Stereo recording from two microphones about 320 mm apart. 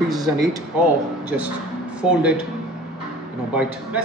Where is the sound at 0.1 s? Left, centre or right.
Centre.